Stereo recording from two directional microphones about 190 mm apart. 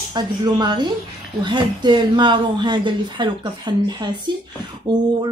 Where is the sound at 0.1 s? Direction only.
25° right (ahead or behind).